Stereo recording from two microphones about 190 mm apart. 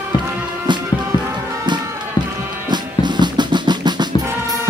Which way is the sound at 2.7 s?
25° right (ahead or behind).